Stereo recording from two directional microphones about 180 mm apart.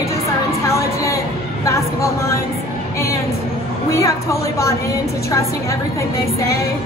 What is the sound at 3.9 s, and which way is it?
Speech, 15° left (ahead or behind).